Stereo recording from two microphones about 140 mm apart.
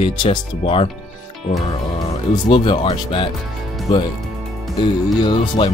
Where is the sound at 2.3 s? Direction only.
35° left (ahead or behind).